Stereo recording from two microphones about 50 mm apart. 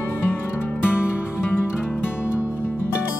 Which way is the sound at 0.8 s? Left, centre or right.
Left.